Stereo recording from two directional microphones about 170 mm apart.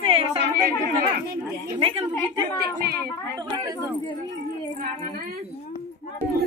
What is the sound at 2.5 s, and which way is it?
Speech, 65° right (ahead or behind).